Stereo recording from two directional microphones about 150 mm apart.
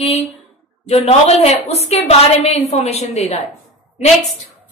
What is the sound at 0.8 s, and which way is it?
A woman's voice, 45° left (ahead or behind).